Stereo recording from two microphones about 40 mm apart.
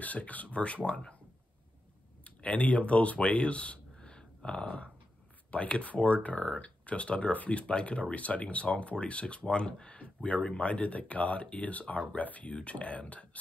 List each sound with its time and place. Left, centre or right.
0.0 s speech: left
2.2 s speech: left